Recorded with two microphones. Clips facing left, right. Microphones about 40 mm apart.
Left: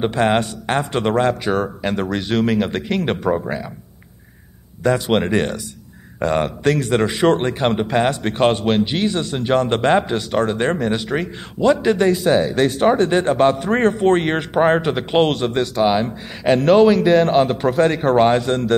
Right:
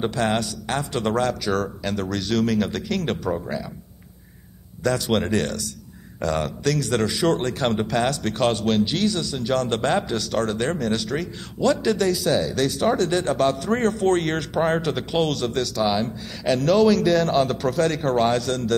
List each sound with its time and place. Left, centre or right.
0.0 s a man's voice: left
4.8 s a man's voice: left